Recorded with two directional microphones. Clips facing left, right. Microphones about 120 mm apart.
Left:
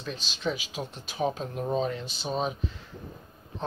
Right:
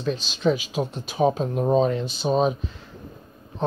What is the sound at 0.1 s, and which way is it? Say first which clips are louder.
Speech: right 9 dB; 90° right.